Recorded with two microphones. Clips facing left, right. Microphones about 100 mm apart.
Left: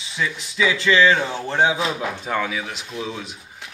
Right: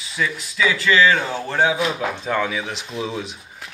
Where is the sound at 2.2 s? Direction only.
5° left (ahead or behind).